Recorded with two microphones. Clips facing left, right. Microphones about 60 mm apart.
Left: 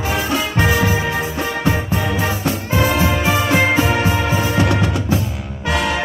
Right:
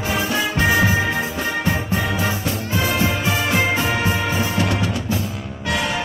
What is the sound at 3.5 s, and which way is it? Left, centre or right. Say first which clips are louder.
Music: left 5 dB; left.